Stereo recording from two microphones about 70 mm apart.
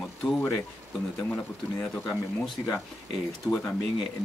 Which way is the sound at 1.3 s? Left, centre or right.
Centre.